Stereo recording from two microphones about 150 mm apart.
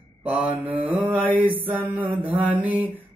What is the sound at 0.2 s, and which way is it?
Mantra, 10° right (ahead or behind).